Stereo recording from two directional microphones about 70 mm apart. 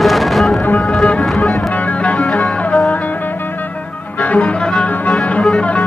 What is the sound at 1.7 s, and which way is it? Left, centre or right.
Music, left.